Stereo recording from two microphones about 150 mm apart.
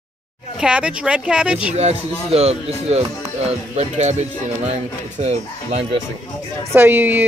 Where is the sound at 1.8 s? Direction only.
45° right (ahead or behind).